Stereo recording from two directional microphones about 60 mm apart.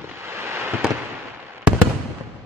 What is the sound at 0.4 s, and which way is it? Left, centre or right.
Fireworks, right.